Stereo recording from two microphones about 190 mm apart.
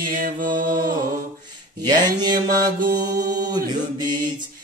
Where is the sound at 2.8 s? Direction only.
45° right (ahead or behind).